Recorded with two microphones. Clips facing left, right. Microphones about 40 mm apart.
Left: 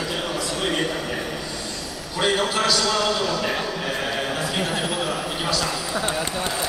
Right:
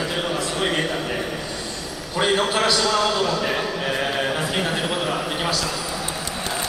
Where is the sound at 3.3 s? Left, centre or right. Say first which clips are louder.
Right 1 dB; centre.